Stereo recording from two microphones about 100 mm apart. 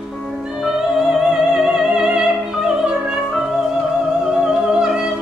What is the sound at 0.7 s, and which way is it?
Music, 5° right (ahead or behind).